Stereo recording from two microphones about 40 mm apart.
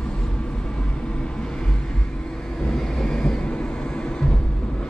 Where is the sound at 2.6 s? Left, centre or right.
Centre.